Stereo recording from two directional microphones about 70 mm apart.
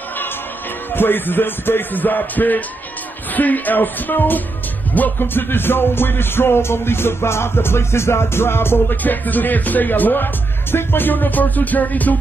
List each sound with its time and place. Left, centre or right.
0.9 s music: left